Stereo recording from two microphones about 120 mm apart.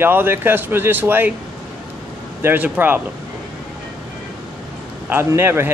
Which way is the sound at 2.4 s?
15° right (ahead or behind).